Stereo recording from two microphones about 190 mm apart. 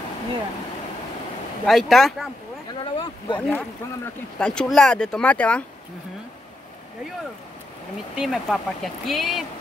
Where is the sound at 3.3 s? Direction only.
10° left (ahead or behind).